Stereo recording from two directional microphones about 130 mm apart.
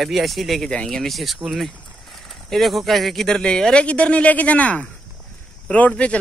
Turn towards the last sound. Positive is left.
turn(degrees=10)  # may be behind; listen again after turning